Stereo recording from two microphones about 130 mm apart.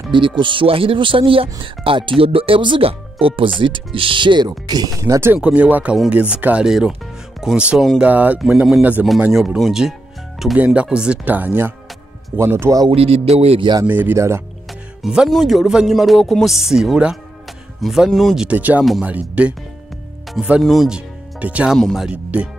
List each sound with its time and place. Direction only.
0.4 s speech: 40° right (ahead or behind); by 5.3 s 25° right (ahead or behind)
5.3 s speech: 10° right (ahead or behind)
12.9 s speech: 50° right (ahead or behind)
13.8 s speech: 15° right (ahead or behind)
14.7 s speech: centre (ahead or behind)
21.7 s speech: centre (ahead or behind)